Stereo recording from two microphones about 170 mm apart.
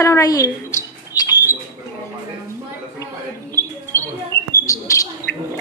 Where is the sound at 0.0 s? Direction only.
20° left (ahead or behind).